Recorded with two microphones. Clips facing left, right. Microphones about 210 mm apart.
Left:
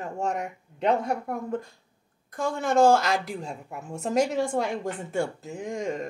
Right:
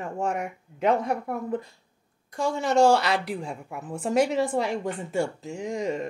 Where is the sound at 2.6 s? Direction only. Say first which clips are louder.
Even; 50° left (ahead or behind).